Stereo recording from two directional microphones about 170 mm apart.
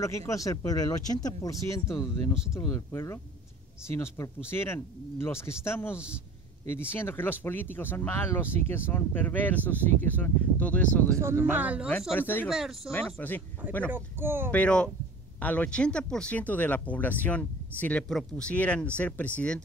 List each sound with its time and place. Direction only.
0.0 s speech: 15° left (ahead or behind)
5.9 s speech: 5° right (ahead or behind)
6.7 s speech: 15° left (ahead or behind)
11.5 s speech: 10° right (ahead or behind)
12.2 s speech: 10° left (ahead or behind)
12.4 s speech: centre (ahead or behind)
12.9 s speech: 10° left (ahead or behind)
13.8 s speech: 10° right (ahead or behind)
14.5 s speech: 5° left (ahead or behind)